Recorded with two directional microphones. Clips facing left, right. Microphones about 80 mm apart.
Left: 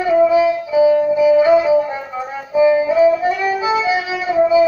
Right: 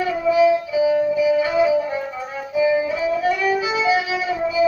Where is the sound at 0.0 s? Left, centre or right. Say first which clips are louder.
Left 4 dB; left.